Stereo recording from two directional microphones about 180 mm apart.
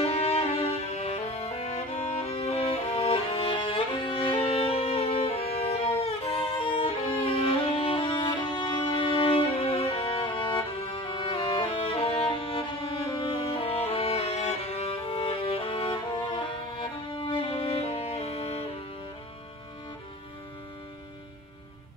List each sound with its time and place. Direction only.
0.0 s music: 35° left (ahead or behind)